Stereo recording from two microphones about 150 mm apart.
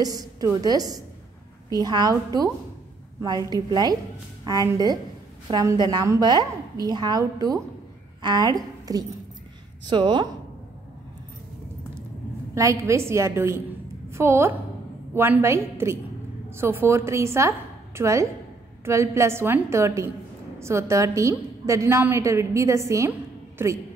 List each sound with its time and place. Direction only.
0.0 s a woman's voice: 25° right (ahead or behind)
12.5 s a woman's voice: 20° right (ahead or behind)